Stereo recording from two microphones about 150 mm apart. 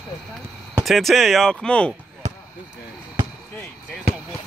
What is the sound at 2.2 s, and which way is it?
Basketball bounce, 50° right (ahead or behind).